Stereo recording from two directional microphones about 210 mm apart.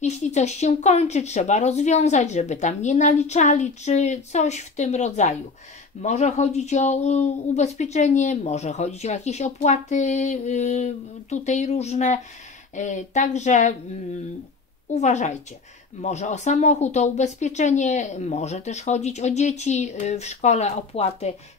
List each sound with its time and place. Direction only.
0.0 s speech: 35° left (ahead or behind)
15.0 s speech: 35° left (ahead or behind)